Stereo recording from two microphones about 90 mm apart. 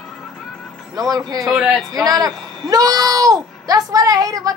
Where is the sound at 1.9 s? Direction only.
45° right (ahead or behind).